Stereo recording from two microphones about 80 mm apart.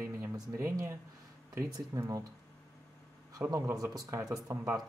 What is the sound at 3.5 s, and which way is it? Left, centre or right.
Speech, right.